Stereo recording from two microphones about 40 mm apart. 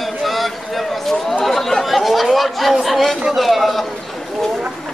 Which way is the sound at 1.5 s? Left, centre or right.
Centre.